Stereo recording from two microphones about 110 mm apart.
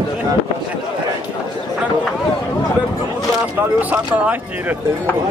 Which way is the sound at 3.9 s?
15° right (ahead or behind).